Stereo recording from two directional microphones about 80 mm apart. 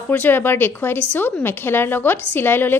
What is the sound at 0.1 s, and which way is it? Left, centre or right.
A woman's voice, left.